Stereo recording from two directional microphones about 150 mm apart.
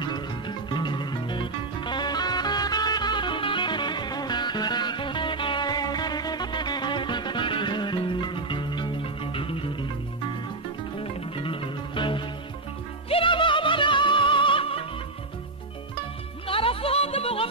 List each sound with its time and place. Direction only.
0.0 s music: 30° left (ahead or behind)
11.0 s music: 35° left (ahead or behind)
16.4 s music: 35° left (ahead or behind)